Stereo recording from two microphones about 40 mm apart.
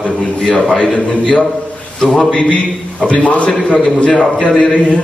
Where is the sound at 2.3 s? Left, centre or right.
Left.